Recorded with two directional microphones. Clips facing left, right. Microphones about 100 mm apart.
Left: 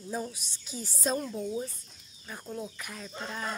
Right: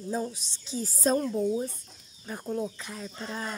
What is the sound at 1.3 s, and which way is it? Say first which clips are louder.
Speech: right 6 dB; 15° right (ahead or behind).